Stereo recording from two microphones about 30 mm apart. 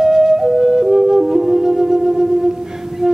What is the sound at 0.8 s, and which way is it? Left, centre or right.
Music, centre.